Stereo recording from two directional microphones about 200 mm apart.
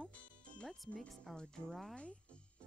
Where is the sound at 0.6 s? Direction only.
5° left (ahead or behind).